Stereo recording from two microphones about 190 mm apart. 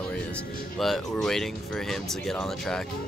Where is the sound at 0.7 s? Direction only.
Centre (ahead or behind).